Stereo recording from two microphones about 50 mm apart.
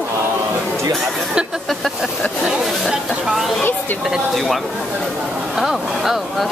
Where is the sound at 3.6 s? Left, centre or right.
Left.